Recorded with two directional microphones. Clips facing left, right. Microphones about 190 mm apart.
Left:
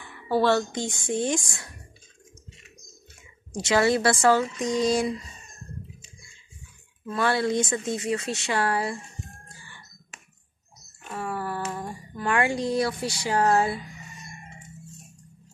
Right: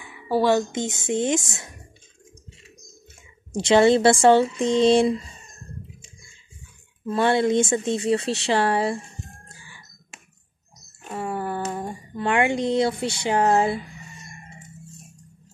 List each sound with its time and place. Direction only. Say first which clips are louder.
0.0 s speech: right 2 dB; 10° right (ahead or behind)
3.5 s speech: right 6 dB; 25° right (ahead or behind)
7.1 s speech: right 5 dB; 25° right (ahead or behind)
9.6 s a sound: right 1 dB; 10° right (ahead or behind)
11.1 s a sound: right 3 dB; 25° right (ahead or behind)
11.7 s speech: right 4 dB; 25° right (ahead or behind)